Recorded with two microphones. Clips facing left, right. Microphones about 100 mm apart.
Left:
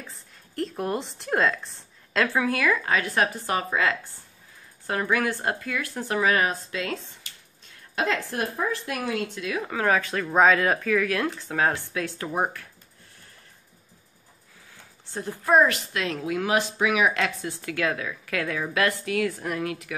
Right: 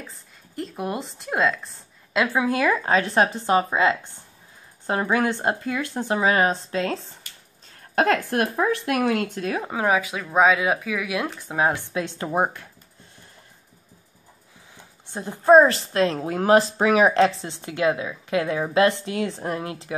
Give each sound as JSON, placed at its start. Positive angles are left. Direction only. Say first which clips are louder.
{"t": 0.0, "sound": "speech", "louder": "right 2 dB", "side_deg": 0}
{"t": 2.1, "sound": "a woman's voice", "louder": "right 2 dB", "side_deg": -15}
{"t": 7.9, "sound": "speech", "louder": "right 6 dB", "side_deg": -50}
{"t": 9.3, "sound": "speech", "louder": "right 4 dB", "side_deg": -45}
{"t": 9.6, "sound": "speech", "louder": "right 1 dB", "side_deg": -20}
{"t": 15.0, "sound": "a woman's voice", "louder": "right 8 dB", "side_deg": -20}